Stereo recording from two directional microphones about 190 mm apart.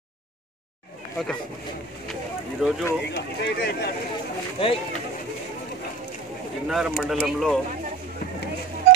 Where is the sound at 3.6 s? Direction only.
55° left (ahead or behind).